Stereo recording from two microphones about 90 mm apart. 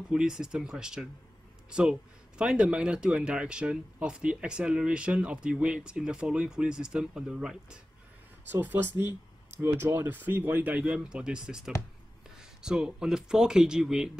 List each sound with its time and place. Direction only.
0.1 s speech: 5° right (ahead or behind)
8.5 s speech: 25° right (ahead or behind); by 14.1 s 5° right (ahead or behind)